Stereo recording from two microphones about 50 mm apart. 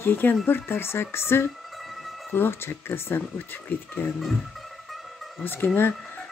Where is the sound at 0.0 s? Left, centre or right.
Left.